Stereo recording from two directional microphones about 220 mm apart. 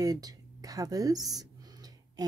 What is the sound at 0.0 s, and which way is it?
A woman's voice, 15° right (ahead or behind).